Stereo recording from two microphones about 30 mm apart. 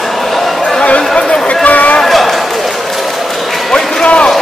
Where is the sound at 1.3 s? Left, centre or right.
Left.